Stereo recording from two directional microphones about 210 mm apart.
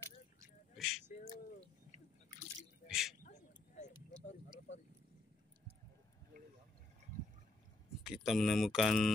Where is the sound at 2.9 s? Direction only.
Centre (ahead or behind).